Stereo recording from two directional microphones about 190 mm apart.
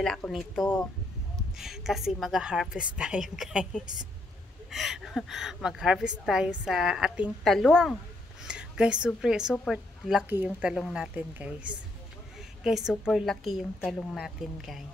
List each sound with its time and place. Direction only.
0.0 s speech: 5° left (ahead or behind)